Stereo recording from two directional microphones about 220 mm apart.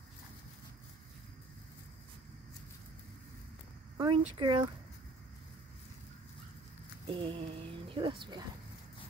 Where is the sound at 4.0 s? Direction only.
20° right (ahead or behind).